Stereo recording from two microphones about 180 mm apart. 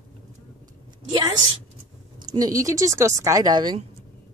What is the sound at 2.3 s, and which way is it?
A woman's voice, 20° right (ahead or behind).